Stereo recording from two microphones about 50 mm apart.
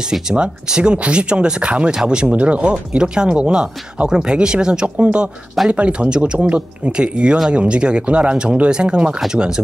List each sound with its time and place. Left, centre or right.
0.0 s speech: centre